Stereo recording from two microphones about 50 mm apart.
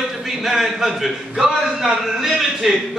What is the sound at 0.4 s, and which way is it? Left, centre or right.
A man's voice, centre.